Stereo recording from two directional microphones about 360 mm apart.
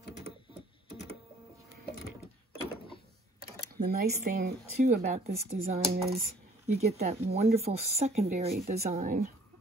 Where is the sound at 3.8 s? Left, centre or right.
Right.